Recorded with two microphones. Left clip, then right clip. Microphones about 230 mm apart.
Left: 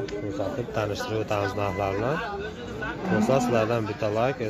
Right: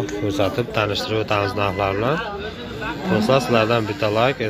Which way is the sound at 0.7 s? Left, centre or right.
Centre.